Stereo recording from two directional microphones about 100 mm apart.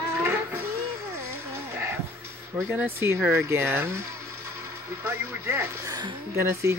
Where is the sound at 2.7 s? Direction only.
20° right (ahead or behind).